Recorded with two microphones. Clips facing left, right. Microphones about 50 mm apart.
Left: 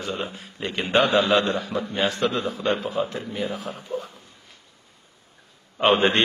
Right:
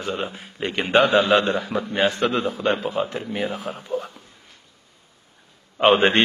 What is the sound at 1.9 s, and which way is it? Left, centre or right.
A man's voice, right.